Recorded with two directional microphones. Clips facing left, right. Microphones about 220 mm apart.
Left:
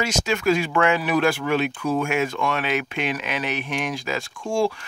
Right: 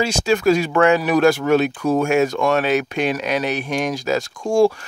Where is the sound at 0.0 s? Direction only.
35° right (ahead or behind).